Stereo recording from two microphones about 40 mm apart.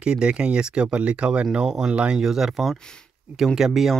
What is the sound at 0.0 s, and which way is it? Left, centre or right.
Speech, right.